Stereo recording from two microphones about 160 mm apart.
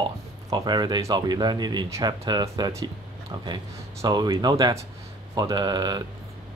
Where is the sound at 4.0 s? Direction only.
25° right (ahead or behind).